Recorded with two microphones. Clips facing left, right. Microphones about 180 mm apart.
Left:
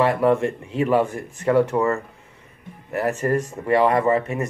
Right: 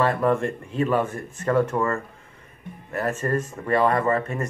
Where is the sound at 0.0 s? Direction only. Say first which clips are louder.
Left 3 dB; 15° left (ahead or behind).